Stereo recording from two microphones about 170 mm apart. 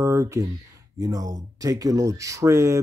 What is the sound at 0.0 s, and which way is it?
Speech, 15° right (ahead or behind).